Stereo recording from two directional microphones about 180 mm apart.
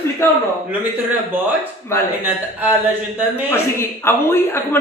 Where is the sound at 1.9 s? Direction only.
15° left (ahead or behind).